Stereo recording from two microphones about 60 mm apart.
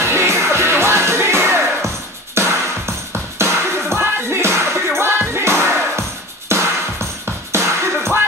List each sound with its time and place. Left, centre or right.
0.0 s music: right